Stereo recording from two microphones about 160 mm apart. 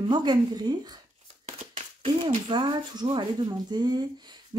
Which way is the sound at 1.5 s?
45° right (ahead or behind).